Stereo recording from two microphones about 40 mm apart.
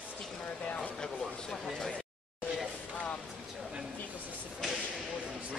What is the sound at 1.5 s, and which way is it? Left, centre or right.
Speech, centre.